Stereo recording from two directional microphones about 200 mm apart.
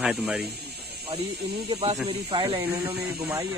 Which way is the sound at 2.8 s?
15° right (ahead or behind).